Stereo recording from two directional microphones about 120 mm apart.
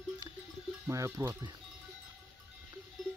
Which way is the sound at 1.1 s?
20° right (ahead or behind).